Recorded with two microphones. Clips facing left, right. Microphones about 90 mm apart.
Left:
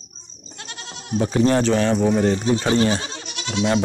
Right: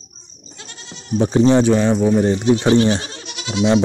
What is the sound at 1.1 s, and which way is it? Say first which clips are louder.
Speech: right 4 dB; 30° right (ahead or behind).